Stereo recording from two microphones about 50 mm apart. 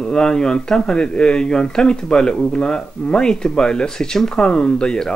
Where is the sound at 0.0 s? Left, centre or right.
Centre.